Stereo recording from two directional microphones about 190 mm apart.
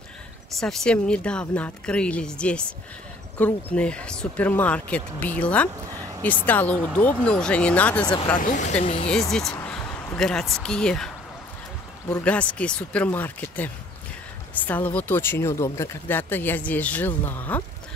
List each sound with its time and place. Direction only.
0.6 s speech: centre (ahead or behind)
8.4 s speech: 40° left (ahead or behind)
9.3 s speech: centre (ahead or behind)
12.1 s speech: 10° left (ahead or behind)